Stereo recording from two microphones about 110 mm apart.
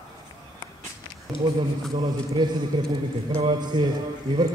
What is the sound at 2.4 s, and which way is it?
A man's voice, 40° right (ahead or behind).